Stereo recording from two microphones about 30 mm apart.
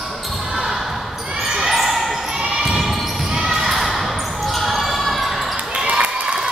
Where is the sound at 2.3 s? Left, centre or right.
Right.